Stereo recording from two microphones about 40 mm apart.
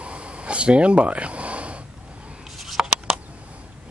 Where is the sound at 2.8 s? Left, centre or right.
Right.